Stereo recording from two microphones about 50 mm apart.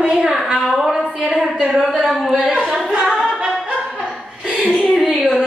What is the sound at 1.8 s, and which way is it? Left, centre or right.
Speech, centre.